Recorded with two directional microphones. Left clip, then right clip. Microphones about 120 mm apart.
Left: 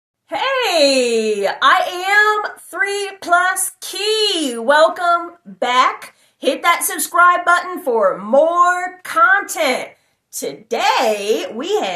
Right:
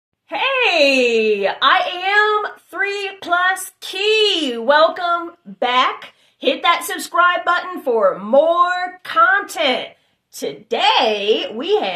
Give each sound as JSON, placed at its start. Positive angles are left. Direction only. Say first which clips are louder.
{"t": 0.3, "sound": "speech", "louder": "right 1 dB", "side_deg": -15}